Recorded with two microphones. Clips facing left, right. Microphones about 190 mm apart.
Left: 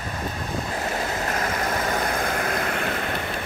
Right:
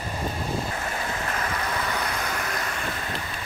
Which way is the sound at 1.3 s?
40° left (ahead or behind).